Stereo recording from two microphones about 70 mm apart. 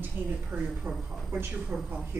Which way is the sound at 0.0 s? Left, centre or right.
Right.